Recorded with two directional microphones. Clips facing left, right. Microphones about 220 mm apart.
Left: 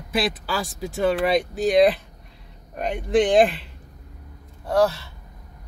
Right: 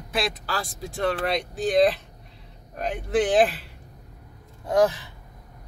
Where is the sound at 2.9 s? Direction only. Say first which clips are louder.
Left 4 dB; 5° right (ahead or behind).